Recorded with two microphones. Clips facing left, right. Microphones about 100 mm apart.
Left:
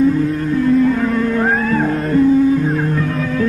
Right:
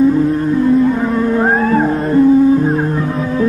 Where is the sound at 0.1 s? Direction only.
25° right (ahead or behind).